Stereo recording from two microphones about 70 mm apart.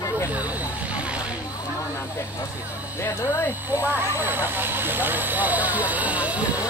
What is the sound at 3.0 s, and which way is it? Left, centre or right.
Speech, left.